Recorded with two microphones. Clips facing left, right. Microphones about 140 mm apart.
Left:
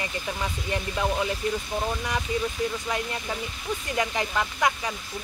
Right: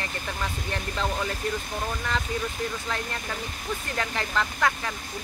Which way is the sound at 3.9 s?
15° left (ahead or behind).